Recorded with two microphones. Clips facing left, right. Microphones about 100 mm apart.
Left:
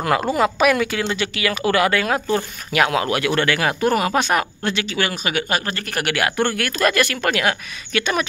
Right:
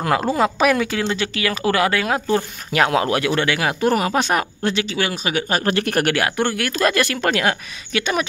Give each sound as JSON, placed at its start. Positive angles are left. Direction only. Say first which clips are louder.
{"t": 0.4, "sound": "speech", "louder": "left 1 dB", "side_deg": -30}
{"t": 5.6, "sound": "speech", "louder": "right 7 dB", "side_deg": -60}
{"t": 6.0, "sound": "speech", "louder": "right 2 dB", "side_deg": -30}
{"t": 6.3, "sound": "speech", "louder": "even", "side_deg": -20}